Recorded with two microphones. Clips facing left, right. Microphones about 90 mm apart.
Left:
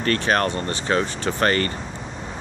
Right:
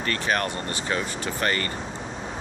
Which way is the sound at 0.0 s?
40° left (ahead or behind).